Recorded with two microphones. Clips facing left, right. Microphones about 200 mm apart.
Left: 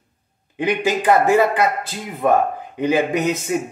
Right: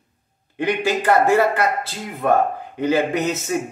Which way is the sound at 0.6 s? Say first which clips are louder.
Left 1 dB; 15° left (ahead or behind).